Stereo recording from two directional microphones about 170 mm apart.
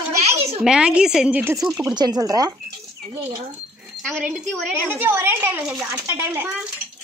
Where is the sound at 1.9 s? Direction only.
25° right (ahead or behind).